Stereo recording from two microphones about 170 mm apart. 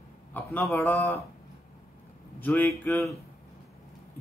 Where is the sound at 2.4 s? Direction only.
10° left (ahead or behind).